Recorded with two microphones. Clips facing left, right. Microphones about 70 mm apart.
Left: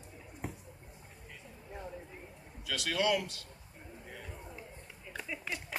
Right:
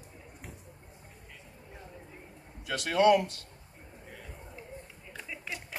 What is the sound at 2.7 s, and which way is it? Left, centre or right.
Speech, right.